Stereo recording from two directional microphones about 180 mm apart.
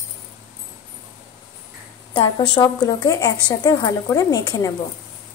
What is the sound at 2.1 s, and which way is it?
A woman's voice, 25° left (ahead or behind).